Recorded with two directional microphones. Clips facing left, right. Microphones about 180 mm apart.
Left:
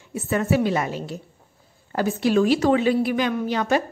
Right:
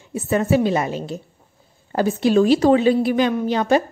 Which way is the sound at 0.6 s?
25° right (ahead or behind).